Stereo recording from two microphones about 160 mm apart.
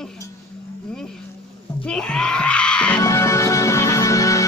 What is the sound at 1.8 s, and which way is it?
Music, 5° left (ahead or behind).